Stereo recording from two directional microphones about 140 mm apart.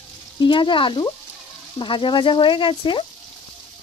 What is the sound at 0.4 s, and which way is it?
Speech, 35° left (ahead or behind).